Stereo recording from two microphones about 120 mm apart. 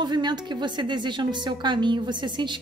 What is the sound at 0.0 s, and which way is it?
A woman's voice, 40° right (ahead or behind).